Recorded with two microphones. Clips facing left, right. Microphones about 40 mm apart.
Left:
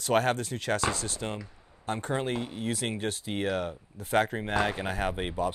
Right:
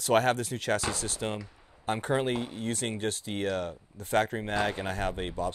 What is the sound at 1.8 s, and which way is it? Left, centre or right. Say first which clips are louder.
Speech: right 2 dB; centre.